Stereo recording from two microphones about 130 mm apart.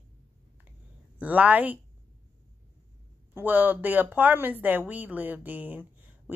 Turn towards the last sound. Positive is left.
turn(degrees=-15)  # may be behind; listen again after turning